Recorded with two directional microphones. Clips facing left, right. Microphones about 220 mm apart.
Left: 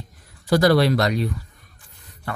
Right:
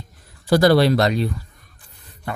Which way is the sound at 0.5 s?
30° right (ahead or behind).